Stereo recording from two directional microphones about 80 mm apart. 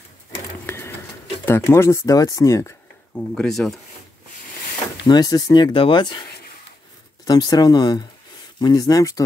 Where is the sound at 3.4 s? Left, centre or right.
Centre.